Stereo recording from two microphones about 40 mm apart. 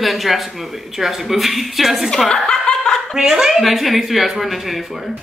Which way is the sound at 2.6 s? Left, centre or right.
Centre.